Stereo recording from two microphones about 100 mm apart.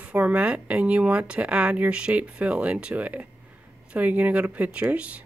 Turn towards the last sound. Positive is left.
turn(degrees=-10)  # may be behind; listen again after turning